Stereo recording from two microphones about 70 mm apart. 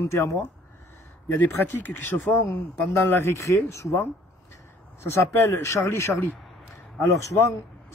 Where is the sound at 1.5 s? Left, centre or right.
Left.